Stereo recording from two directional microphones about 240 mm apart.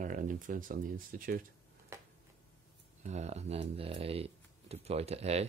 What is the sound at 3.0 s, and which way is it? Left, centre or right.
Speech, right.